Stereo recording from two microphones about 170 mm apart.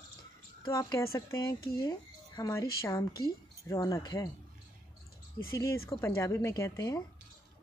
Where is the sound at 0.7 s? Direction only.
20° left (ahead or behind).